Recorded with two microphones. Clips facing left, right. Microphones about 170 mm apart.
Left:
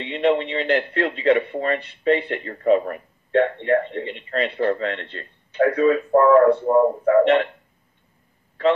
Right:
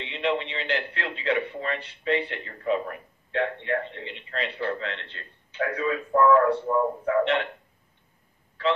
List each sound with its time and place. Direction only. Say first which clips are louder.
0.1 s a man's voice: left 8 dB; 45° left (ahead or behind)